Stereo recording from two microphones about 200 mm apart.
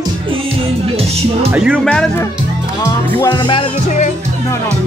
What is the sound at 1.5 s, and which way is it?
Speech, 5° right (ahead or behind).